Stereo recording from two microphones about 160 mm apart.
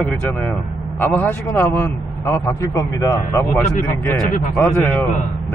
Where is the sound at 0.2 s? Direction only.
10° left (ahead or behind).